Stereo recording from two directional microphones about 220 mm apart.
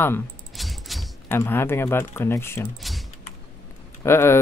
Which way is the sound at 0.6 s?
Centre (ahead or behind).